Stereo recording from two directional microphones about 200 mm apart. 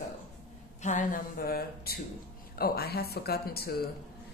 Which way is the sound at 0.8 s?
40° left (ahead or behind).